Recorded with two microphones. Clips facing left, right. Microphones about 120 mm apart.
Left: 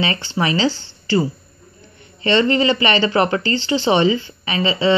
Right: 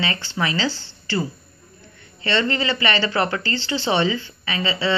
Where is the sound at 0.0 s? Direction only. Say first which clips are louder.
Left 4 dB; 20° left (ahead or behind).